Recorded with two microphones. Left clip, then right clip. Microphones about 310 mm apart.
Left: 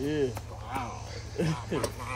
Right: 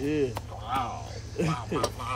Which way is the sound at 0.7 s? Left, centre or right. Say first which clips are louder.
Right 6 dB; centre.